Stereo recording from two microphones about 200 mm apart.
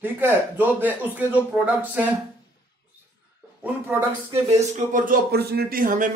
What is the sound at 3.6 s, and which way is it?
Speech, 10° right (ahead or behind).